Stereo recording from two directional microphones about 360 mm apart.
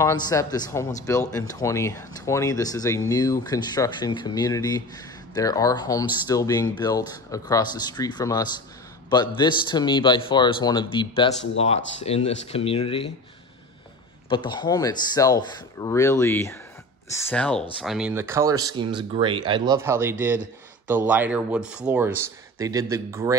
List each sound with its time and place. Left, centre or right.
0.0 s speech: centre
14.3 s speech: centre